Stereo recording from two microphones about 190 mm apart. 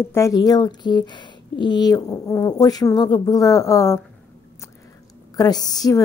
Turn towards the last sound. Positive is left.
turn(degrees=20)  # may be behind; listen again after turning